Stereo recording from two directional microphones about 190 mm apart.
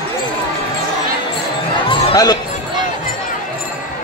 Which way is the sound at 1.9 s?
25° left (ahead or behind).